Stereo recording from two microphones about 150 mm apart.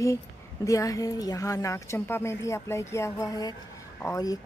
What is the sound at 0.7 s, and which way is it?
Speech, 20° left (ahead or behind).